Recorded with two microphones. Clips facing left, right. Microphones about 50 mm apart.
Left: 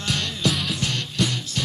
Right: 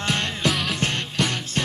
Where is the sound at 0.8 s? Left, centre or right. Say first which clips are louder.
Right 1 dB; right.